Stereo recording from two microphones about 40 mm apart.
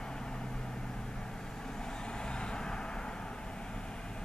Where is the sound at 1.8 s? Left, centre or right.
Centre.